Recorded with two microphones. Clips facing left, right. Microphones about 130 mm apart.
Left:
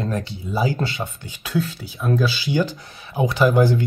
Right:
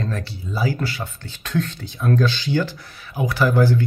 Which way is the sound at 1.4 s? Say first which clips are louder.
Even; 5° left (ahead or behind).